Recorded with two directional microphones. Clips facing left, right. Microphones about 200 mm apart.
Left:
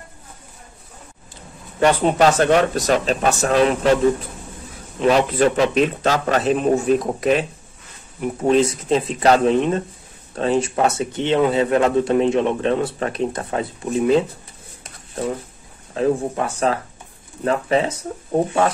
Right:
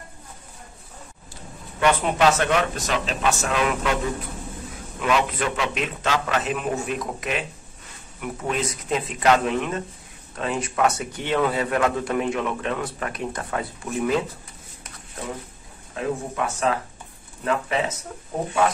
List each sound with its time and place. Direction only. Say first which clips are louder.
1.8 s a man's voice: left 5 dB; 35° left (ahead or behind)
5.0 s a man's voice: left 7 dB; 35° left (ahead or behind)
15.9 s a man's voice: left 8 dB; 35° left (ahead or behind)